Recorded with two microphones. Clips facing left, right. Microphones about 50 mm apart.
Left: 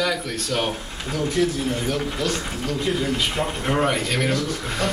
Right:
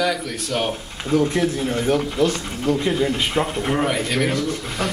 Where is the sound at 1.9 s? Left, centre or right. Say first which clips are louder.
Right 5 dB; right.